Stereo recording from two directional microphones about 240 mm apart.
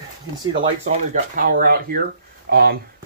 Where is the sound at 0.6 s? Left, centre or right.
Right.